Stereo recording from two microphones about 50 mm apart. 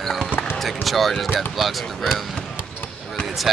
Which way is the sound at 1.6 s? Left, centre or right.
Centre.